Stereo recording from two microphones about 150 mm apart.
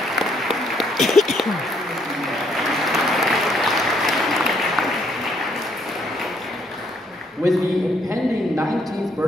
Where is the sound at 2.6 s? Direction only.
Centre (ahead or behind).